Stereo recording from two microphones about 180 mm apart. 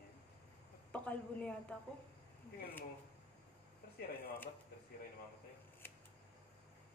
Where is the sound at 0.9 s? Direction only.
5° left (ahead or behind).